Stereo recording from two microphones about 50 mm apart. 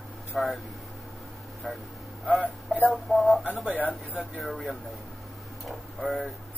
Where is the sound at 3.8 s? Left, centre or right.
Left.